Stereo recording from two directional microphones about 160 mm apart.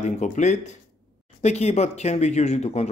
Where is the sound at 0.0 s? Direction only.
45° left (ahead or behind).